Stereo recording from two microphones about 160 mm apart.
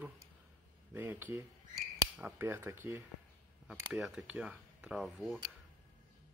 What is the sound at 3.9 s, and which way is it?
Speech, 5° right (ahead or behind).